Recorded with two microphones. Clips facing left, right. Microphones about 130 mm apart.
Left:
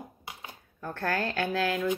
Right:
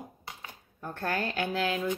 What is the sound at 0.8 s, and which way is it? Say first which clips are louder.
A woman's voice: left 2 dB; 20° right (ahead or behind).